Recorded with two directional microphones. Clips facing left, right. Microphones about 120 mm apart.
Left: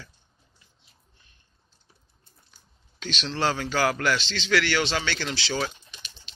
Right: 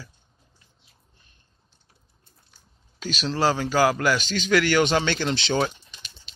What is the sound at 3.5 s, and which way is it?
A man's voice, 15° right (ahead or behind).